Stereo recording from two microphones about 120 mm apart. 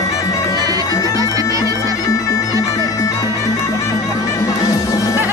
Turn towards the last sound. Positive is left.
turn(degrees=25)  # may be behind; listen again after turning